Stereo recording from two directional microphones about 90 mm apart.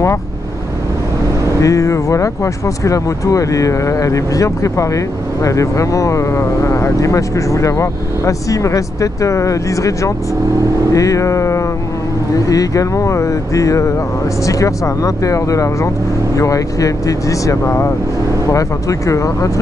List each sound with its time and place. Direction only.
1.5 s speech: 40° left (ahead or behind)